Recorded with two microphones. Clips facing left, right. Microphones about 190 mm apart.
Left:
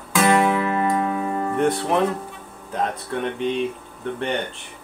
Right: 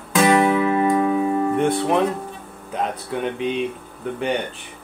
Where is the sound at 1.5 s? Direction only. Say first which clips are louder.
Right 1 dB; centre (ahead or behind).